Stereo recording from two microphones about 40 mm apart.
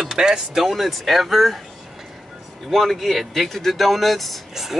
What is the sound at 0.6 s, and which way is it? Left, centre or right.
Speech, centre.